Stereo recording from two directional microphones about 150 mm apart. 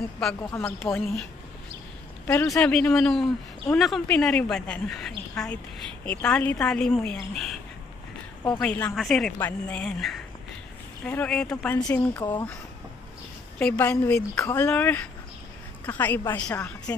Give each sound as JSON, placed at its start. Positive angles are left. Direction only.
{"t": 0.9, "sound": "speech", "side_deg": 5}
{"t": 2.2, "sound": "a woman's voice", "side_deg": 20}
{"t": 2.6, "sound": "a woman's voice", "side_deg": 5}
{"t": 12.2, "sound": "a woman's voice", "side_deg": 25}
{"t": 13.6, "sound": "a woman's voice", "side_deg": 10}
{"t": 16.5, "sound": "a woman's voice", "side_deg": 20}